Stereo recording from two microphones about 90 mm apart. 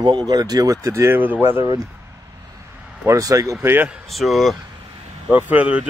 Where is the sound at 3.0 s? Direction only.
35° right (ahead or behind).